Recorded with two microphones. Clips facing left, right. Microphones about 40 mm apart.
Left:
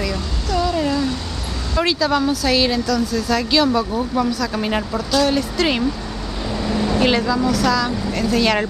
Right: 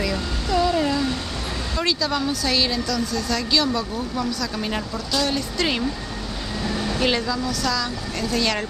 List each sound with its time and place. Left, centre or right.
0.6 s a sound: centre
1.8 s a woman's voice: centre
4.9 s a woman's voice: centre
6.7 s vehicle: left
7.1 s a woman's voice: centre